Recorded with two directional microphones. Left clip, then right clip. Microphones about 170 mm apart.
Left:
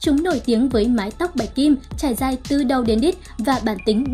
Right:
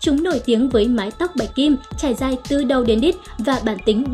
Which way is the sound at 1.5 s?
40° left (ahead or behind).